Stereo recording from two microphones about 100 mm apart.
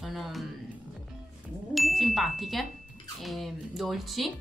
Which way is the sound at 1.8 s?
Centre (ahead or behind).